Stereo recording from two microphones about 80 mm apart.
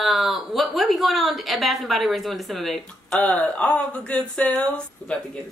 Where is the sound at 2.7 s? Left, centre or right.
Centre.